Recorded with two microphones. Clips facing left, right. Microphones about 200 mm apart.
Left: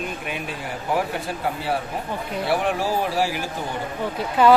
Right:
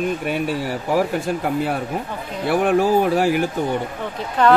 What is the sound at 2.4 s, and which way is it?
Speech, 55° right (ahead or behind).